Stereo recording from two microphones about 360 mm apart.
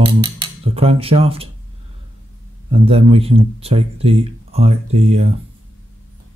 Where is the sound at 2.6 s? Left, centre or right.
Centre.